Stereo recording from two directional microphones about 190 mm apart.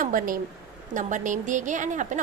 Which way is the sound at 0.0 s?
45° right (ahead or behind).